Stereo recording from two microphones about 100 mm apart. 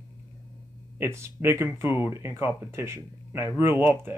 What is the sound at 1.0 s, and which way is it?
Speech, 25° right (ahead or behind).